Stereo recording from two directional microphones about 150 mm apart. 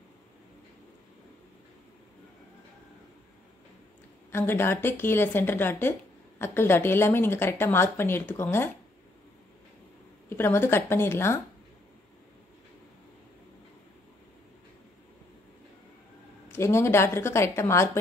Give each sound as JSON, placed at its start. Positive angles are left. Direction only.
{"t": 4.3, "sound": "speech", "side_deg": 15}
{"t": 10.3, "sound": "speech", "side_deg": 15}
{"t": 16.5, "sound": "speech", "side_deg": 15}